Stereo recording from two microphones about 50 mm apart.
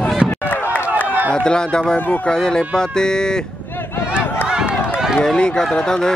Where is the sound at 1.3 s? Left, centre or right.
Centre.